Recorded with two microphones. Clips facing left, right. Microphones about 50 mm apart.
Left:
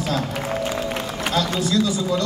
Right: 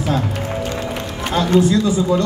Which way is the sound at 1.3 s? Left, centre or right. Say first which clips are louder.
Right 7 dB; right.